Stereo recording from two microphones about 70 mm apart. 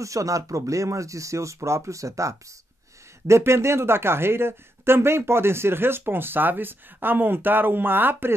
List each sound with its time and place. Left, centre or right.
0.0 s speech: right